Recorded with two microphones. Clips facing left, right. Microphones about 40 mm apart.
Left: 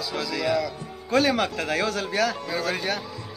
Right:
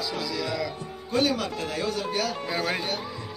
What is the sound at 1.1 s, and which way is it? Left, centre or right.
Speech, left.